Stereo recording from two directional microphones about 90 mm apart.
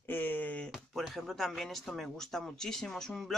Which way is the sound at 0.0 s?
20° left (ahead or behind).